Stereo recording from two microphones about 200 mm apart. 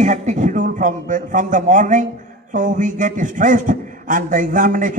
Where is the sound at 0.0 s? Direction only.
35° right (ahead or behind).